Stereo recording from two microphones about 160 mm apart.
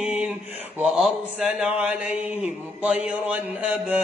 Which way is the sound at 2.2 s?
45° left (ahead or behind).